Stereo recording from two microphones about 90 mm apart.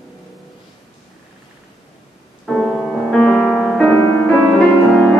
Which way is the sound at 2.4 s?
Centre (ahead or behind).